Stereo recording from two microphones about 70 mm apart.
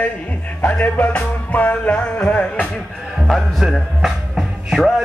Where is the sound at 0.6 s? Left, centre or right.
Left.